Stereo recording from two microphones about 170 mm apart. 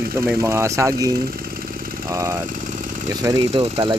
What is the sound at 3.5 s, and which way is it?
Speech, 35° right (ahead or behind).